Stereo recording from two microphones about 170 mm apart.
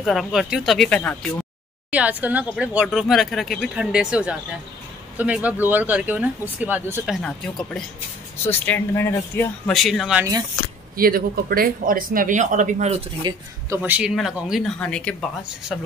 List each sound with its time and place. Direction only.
0.0 s speech: centre (ahead or behind)
1.9 s speech: 10° right (ahead or behind)
7.2 s speech: 5° left (ahead or behind)
9.7 s speech: centre (ahead or behind)
11.0 s speech: 60° right (ahead or behind); by 13.0 s 45° right (ahead or behind)
13.2 s speech: 25° right (ahead or behind)
13.8 s speech: 5° right (ahead or behind)